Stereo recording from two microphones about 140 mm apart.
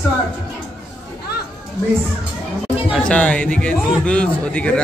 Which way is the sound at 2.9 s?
10° left (ahead or behind).